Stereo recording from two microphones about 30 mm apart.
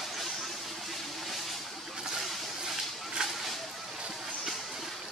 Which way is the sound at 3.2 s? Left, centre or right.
Right.